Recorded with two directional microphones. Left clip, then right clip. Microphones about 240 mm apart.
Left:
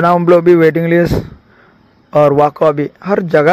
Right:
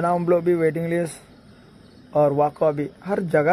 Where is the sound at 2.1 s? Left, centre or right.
Centre.